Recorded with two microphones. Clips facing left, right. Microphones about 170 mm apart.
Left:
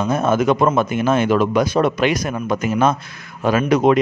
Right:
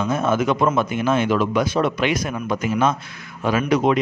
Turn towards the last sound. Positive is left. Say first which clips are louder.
# left 3 dB
turn(degrees=50)  # may be behind; listen again after turning